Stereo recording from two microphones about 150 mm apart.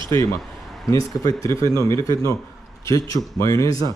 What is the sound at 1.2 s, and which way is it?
Speech, 20° left (ahead or behind).